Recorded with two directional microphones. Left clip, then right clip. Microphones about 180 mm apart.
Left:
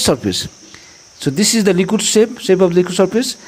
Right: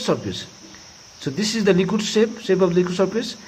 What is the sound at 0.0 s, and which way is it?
Speech, 40° left (ahead or behind).